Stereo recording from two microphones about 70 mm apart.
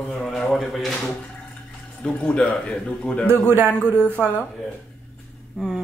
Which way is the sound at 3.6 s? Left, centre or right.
Centre.